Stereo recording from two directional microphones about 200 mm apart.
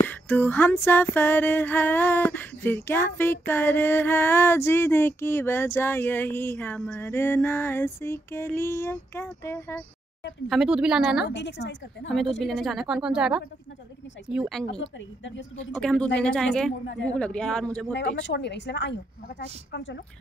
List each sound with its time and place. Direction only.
0.0 s a sound: 10° left (ahead or behind)
10.5 s a woman's voice: 5° right (ahead or behind)
11.2 s a woman's voice: 60° left (ahead or behind)
12.4 s a woman's voice: centre (ahead or behind)
15.0 s a woman's voice: 65° left (ahead or behind)
15.7 s a woman's voice: 5° left (ahead or behind)
16.8 s a woman's voice: 60° left (ahead or behind)
17.1 s a woman's voice: 5° left (ahead or behind)
17.9 s a woman's voice: 60° left (ahead or behind)